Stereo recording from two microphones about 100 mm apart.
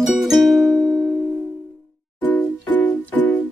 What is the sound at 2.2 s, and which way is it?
Music, 15° left (ahead or behind).